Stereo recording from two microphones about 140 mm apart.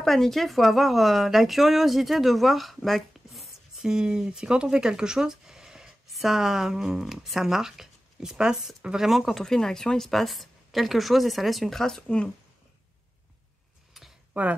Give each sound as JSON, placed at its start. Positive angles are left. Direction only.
{"t": 0.0, "sound": "speech", "side_deg": 0}
{"t": 14.0, "sound": "a sound", "side_deg": 0}
{"t": 14.3, "sound": "speech", "side_deg": -10}